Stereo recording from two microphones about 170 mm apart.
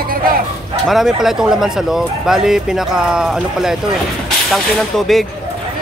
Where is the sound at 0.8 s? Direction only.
Centre (ahead or behind).